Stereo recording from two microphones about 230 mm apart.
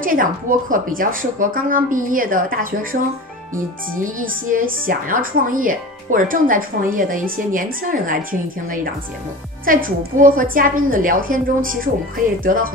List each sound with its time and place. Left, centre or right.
0.0 s a woman's voice: right
4.0 s a woman's voice: right